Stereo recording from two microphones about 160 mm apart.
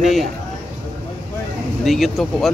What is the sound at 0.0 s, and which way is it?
Speech, centre (ahead or behind).